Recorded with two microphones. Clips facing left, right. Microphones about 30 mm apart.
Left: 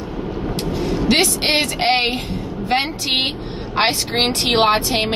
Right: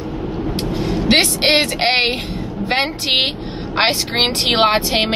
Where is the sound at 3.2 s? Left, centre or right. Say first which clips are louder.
Right 3 dB; centre.